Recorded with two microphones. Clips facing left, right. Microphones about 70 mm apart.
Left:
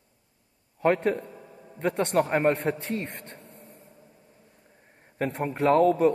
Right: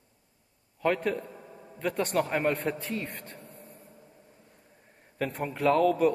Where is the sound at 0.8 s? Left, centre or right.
Left.